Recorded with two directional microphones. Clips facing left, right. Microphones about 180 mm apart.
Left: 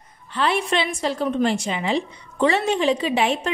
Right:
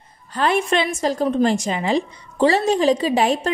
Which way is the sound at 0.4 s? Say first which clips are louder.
Right 3 dB; 45° right (ahead or behind).